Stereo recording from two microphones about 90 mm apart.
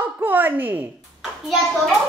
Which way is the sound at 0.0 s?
20° right (ahead or behind).